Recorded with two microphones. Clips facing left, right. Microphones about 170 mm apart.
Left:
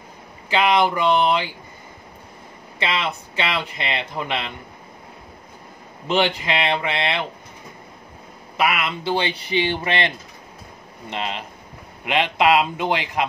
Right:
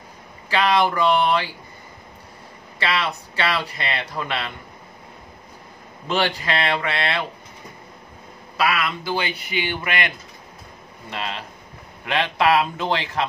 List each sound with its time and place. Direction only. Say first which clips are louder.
0.5 s speech: left 1 dB; 20° left (ahead or behind)
2.8 s speech: even; 20° left (ahead or behind)
6.0 s speech: left 2 dB; 20° left (ahead or behind)
8.5 s a man's voice: even; 20° left (ahead or behind)